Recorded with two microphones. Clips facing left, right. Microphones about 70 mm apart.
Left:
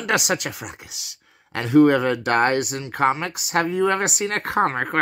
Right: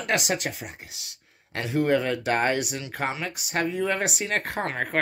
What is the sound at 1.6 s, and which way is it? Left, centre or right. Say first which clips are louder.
Speech: left 8 dB; left.